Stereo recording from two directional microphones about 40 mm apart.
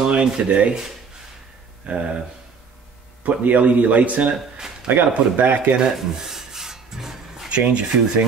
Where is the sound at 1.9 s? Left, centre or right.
Right.